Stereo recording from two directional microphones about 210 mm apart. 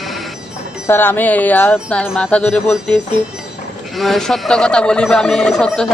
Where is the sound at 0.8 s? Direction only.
10° left (ahead or behind).